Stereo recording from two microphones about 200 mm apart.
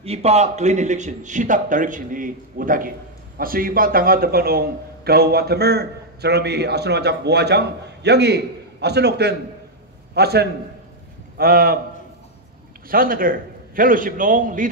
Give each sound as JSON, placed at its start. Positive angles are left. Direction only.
{"t": 0.0, "sound": "a man's voice", "side_deg": -30}
{"t": 12.8, "sound": "a man's voice", "side_deg": -45}